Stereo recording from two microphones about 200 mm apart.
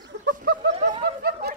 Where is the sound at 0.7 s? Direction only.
30° right (ahead or behind).